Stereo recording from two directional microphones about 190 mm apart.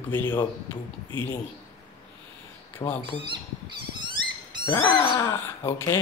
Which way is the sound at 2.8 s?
20° left (ahead or behind).